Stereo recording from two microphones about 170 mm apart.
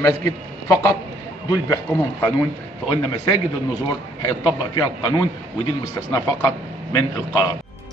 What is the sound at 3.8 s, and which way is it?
A man's voice, 25° left (ahead or behind).